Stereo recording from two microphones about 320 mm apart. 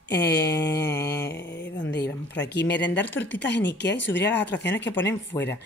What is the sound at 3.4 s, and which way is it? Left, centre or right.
Speech, left.